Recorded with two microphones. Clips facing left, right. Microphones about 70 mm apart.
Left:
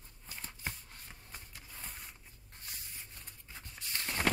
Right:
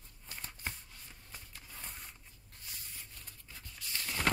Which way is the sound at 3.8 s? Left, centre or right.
Left.